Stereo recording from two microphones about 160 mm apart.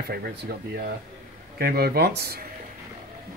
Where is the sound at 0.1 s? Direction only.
75° right (ahead or behind).